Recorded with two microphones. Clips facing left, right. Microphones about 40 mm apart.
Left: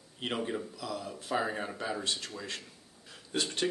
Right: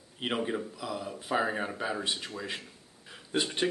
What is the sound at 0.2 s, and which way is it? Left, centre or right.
Speech, centre.